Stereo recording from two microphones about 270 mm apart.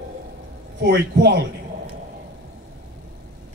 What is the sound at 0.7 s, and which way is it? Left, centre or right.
Speech, right.